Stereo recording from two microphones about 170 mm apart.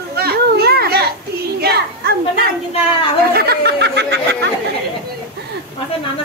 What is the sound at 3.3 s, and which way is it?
Speech, 70° right (ahead or behind).